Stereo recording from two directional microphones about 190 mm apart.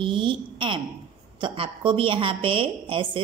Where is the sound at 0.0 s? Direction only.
25° right (ahead or behind).